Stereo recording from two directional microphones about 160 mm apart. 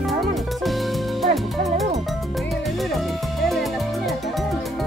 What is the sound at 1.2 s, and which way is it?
Music, centre (ahead or behind).